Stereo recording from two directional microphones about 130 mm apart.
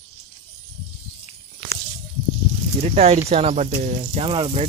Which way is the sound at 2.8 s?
55° right (ahead or behind).